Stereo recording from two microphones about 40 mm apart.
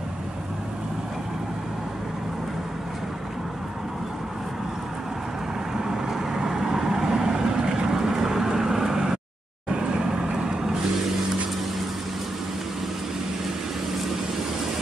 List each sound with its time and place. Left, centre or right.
5.8 s vehicle: centre